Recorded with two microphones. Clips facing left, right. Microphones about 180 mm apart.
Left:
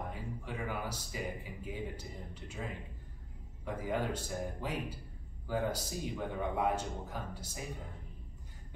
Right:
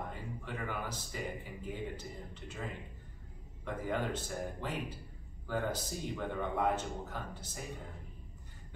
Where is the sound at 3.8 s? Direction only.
10° left (ahead or behind).